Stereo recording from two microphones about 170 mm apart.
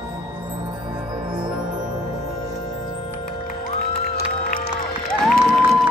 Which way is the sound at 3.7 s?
60° left (ahead or behind).